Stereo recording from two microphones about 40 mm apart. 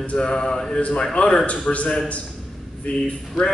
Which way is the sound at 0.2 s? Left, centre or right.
Centre.